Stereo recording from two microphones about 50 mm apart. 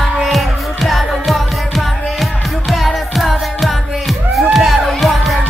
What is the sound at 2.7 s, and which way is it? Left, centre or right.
Music, centre.